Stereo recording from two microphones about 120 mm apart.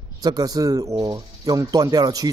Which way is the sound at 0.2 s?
35° right (ahead or behind).